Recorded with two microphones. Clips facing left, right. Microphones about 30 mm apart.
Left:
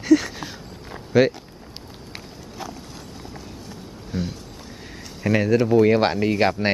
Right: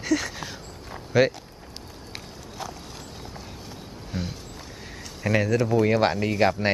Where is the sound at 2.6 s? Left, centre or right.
Centre.